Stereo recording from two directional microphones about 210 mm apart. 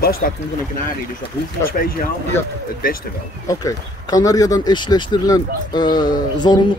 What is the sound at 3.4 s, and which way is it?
Speech, 15° left (ahead or behind).